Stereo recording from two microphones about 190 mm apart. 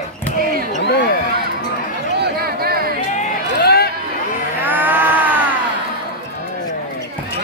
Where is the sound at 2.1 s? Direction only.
55° right (ahead or behind).